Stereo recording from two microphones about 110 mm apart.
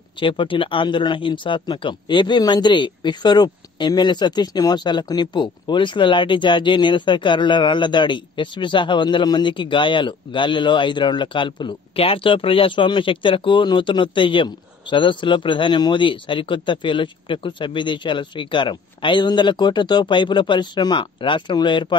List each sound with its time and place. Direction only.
0.2 s speech: 50° left (ahead or behind)